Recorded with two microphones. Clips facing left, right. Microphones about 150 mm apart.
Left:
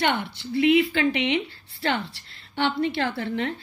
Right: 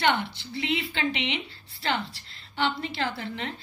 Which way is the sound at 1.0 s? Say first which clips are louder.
Left 6 dB; 50° left (ahead or behind).